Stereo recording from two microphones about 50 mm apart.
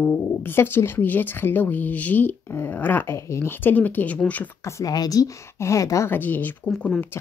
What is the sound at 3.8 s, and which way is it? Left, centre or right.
Speech, left.